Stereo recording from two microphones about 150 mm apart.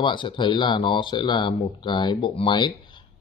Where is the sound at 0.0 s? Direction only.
30° left (ahead or behind).